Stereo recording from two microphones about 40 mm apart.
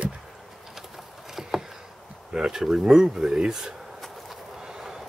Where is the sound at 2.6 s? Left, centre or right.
Centre.